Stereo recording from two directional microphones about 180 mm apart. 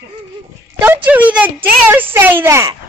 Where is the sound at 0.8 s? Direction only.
10° right (ahead or behind).